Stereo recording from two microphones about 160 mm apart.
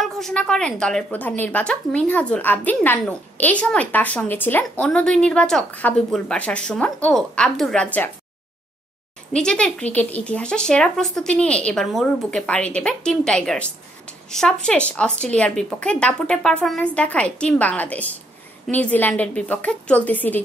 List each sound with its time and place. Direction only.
0.0 s a woman's voice: 5° left (ahead or behind)
9.3 s a woman's voice: 5° left (ahead or behind)